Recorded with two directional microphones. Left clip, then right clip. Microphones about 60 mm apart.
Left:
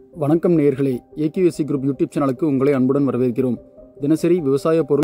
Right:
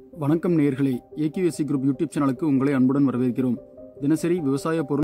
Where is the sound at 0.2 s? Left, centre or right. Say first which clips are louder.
Left 6 dB; left.